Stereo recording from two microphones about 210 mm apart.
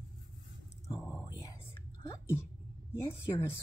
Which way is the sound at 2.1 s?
10° left (ahead or behind).